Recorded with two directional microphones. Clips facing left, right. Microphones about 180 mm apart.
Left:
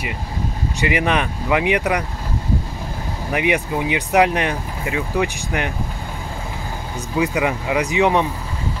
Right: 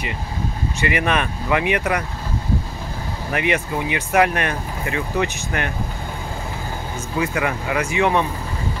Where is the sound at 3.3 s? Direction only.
15° left (ahead or behind).